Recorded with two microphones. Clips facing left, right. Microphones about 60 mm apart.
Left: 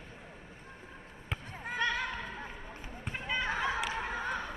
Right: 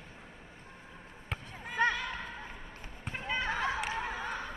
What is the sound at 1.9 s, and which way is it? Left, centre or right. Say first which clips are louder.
Music: left 2 dB; left.